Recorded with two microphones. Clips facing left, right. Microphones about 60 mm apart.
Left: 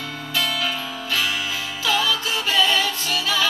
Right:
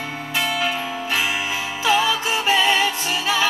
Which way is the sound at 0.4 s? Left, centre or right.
Right.